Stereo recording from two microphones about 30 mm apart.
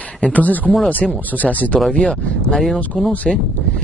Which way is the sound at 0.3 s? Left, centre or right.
Left.